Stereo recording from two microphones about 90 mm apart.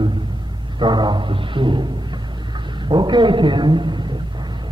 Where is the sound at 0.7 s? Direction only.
55° right (ahead or behind).